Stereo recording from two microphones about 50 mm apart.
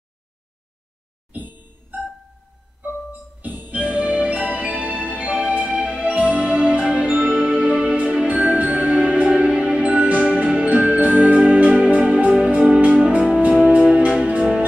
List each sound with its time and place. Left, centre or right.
1.3 s music: right
3.1 s music: right